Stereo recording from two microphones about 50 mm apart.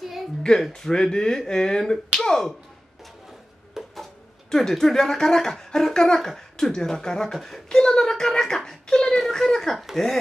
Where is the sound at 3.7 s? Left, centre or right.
Centre.